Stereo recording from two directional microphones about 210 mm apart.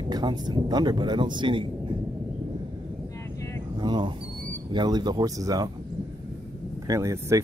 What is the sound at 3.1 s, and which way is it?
Vehicle, 15° left (ahead or behind).